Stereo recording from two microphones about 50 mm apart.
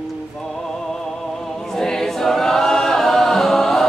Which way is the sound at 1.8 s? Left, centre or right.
Centre.